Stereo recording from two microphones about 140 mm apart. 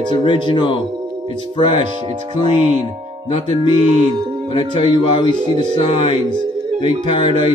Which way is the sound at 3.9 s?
50° right (ahead or behind).